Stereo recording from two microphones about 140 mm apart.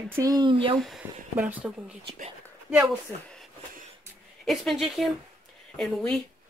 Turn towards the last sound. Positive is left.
turn(degrees=5)  # may be behind; listen again after turning